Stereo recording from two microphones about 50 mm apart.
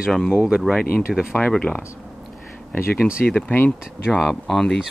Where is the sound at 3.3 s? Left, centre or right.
Left.